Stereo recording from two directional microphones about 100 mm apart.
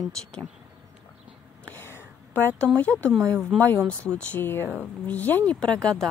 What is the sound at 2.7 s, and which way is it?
Speech, 15° left (ahead or behind).